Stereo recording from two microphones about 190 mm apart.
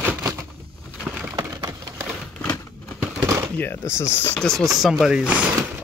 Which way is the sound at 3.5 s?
10° left (ahead or behind).